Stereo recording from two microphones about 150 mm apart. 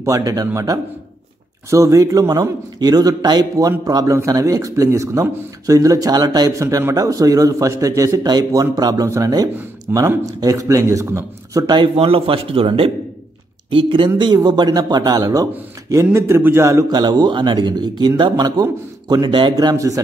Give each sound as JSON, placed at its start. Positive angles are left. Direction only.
{"t": 0.0, "sound": "speech", "side_deg": -20}